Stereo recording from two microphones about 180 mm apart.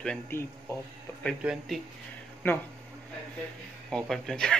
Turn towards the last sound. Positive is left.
turn(degrees=5)  # may be behind; listen again after turning